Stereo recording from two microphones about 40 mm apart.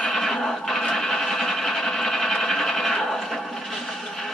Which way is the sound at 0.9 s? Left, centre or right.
Centre.